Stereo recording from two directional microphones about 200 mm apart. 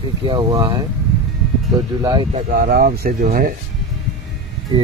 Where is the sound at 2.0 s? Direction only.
20° right (ahead or behind); by 3.5 s 45° right (ahead or behind).